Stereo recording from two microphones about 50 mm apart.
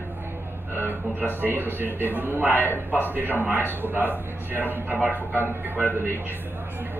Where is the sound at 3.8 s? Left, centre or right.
Right.